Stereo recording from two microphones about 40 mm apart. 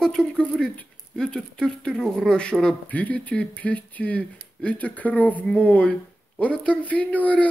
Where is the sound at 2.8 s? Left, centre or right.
Left.